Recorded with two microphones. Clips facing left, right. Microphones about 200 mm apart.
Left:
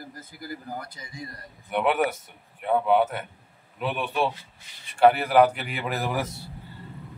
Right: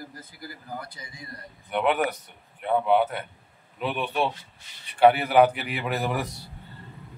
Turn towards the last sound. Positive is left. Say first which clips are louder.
# even
turn(degrees=0)  # may be behind; listen again after turning